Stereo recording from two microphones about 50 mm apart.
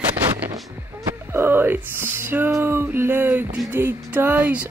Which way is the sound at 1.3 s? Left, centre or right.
Right.